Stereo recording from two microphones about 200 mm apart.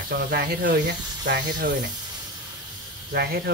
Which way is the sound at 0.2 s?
55° right (ahead or behind).